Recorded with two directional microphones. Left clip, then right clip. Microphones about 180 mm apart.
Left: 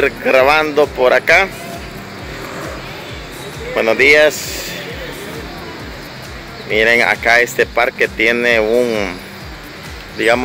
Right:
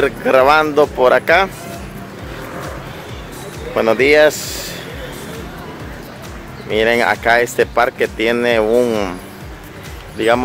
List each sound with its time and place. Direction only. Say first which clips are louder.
0.0 s speech: even; 20° right (ahead or behind)
3.7 s speech: left 1 dB; 25° right (ahead or behind)
6.7 s speech: left 2 dB; 20° right (ahead or behind)
10.1 s speech: left 1 dB; 15° right (ahead or behind)